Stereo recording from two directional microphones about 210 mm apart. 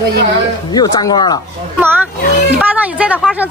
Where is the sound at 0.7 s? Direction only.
20° left (ahead or behind).